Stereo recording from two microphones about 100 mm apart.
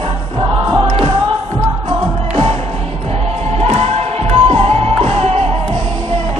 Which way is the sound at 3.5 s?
90° right.